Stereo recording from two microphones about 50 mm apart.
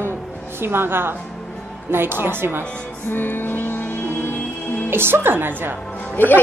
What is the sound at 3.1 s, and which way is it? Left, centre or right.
Music, left.